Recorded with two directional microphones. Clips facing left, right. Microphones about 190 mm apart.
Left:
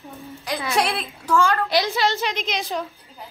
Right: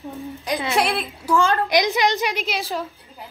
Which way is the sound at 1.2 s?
15° right (ahead or behind).